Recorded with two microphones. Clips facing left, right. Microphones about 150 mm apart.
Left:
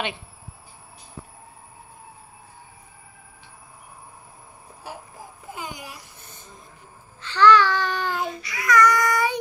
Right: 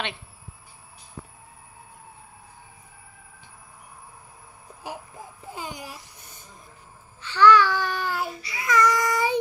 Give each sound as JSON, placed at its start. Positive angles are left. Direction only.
{"t": 5.5, "sound": "babbling", "side_deg": -35}
{"t": 7.2, "sound": "babbling", "side_deg": -10}
{"t": 8.4, "sound": "child singing", "side_deg": -30}